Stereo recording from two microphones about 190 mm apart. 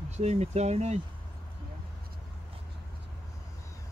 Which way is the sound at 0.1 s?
35° right (ahead or behind).